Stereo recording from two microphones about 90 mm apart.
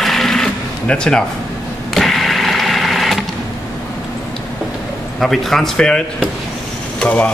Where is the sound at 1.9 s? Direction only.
Centre (ahead or behind).